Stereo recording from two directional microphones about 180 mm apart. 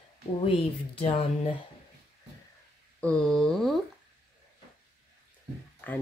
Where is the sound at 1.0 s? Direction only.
30° left (ahead or behind).